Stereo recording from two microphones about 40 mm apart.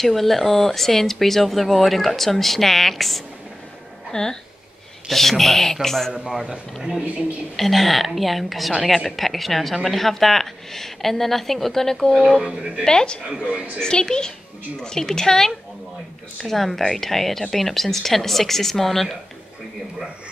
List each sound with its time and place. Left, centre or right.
0.0 s speech: centre
4.1 s speech: centre
5.0 s speech: centre
7.5 s speech: centre
12.4 s speech: centre
12.8 s a child's voice: centre
13.4 s a woman's voice: right
13.7 s a child's voice: centre